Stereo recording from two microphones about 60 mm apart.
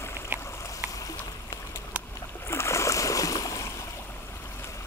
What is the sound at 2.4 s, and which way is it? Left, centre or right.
Splash, left.